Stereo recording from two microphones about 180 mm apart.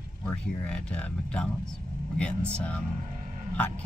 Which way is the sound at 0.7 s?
5° left (ahead or behind).